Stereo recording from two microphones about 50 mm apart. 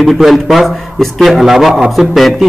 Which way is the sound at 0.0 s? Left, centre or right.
Centre.